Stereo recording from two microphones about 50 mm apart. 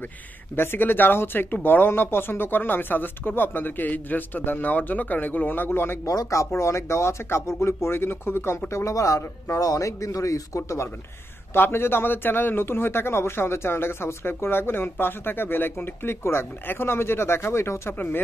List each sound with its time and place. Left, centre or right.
0.6 s a man's voice: left
6.0 s speech: left
11.5 s a man's voice: left
17.9 s a man's voice: left